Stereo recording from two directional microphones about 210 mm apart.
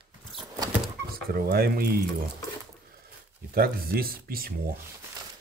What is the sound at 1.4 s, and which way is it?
Speech, 45° right (ahead or behind).